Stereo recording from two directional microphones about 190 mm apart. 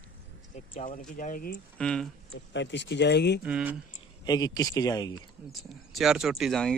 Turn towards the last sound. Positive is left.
turn(degrees=0)  # may be behind; listen again after turning